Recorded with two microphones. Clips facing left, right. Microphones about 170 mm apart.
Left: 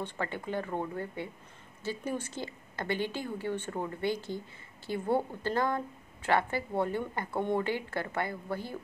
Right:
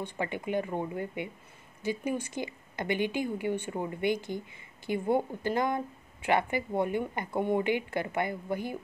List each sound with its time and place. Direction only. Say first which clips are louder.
0.0 s a woman's voice: right 2 dB; 15° right (ahead or behind)